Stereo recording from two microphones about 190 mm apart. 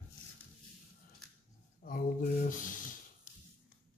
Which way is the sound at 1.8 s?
45° left (ahead or behind).